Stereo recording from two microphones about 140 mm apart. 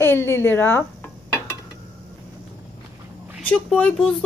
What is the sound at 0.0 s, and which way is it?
Speech, 15° left (ahead or behind).